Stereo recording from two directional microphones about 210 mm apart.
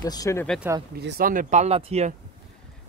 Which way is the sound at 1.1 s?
45° right (ahead or behind).